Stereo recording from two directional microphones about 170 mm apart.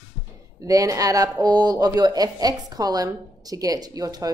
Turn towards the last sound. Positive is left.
turn(degrees=-20)  # may be behind; listen again after turning